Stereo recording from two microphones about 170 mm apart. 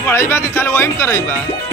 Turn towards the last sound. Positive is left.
turn(degrees=15)  # may be behind; listen again after turning